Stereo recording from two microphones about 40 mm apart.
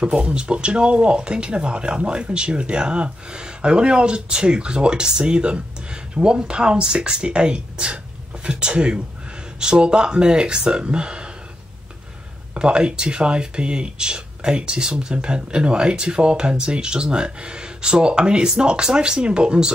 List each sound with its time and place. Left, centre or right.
0.0 s speech: right
12.5 s speech: right